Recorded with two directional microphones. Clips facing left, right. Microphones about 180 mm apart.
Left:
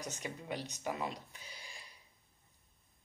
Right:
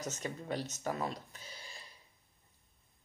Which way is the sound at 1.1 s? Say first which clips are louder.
Right 2 dB; 15° left (ahead or behind).